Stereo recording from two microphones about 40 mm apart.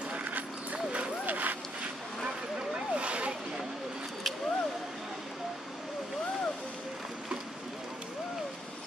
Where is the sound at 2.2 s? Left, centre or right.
Right.